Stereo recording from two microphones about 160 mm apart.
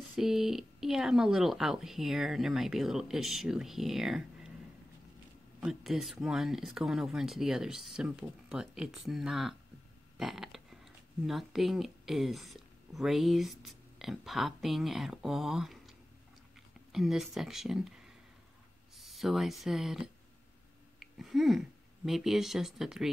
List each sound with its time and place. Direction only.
0.1 s speech: centre (ahead or behind)
5.6 s speech: centre (ahead or behind)
10.1 s a sound: centre (ahead or behind)
11.2 s speech: centre (ahead or behind)
16.9 s speech: centre (ahead or behind)